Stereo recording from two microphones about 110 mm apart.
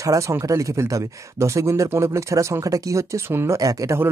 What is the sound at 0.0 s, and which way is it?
Speech, 30° right (ahead or behind).